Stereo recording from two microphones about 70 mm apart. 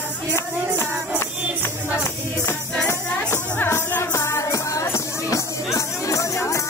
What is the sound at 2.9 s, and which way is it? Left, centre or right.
Music, left.